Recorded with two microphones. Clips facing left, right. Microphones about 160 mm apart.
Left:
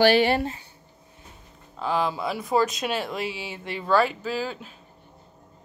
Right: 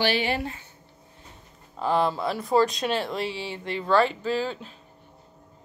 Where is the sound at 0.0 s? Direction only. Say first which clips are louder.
Left 6 dB; 50° left (ahead or behind).